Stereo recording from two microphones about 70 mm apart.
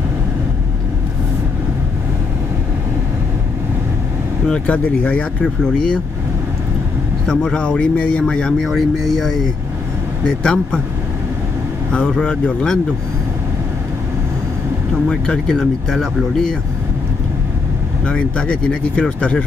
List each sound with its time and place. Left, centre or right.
4.5 s speech: centre
7.2 s speech: centre
8.6 s speech: centre
11.9 s speech: centre
15.0 s speech: centre
18.0 s speech: centre